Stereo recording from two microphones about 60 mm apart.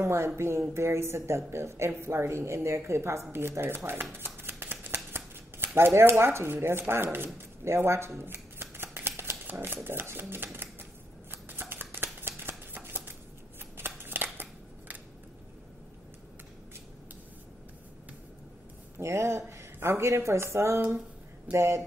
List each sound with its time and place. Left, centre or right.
0.0 s speech: right
8.2 s shuffling cards: right
9.8 s speech: right
11.4 s shuffling cards: right
13.7 s scissors: right
18.9 s speech: right